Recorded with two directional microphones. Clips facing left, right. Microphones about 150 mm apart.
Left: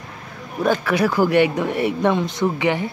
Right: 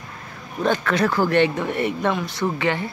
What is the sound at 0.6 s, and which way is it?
Speech, 10° left (ahead or behind).